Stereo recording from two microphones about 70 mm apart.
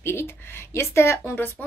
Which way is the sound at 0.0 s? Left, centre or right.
Left.